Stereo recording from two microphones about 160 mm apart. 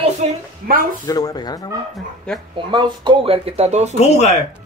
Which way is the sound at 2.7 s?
35° right (ahead or behind).